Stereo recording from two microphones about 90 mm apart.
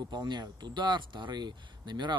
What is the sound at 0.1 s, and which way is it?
Speech, 55° right (ahead or behind).